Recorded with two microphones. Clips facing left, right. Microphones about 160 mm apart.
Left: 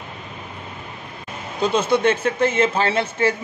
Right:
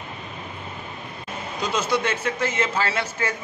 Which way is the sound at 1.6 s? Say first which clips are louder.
Left 6 dB; 30° left (ahead or behind).